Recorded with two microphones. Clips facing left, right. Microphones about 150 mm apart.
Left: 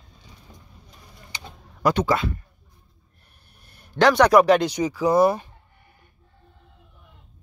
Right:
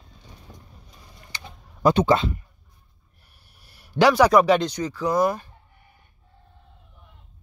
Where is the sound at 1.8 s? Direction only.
25° right (ahead or behind).